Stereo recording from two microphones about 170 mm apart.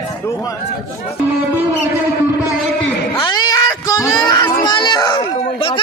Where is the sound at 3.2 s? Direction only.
25° left (ahead or behind).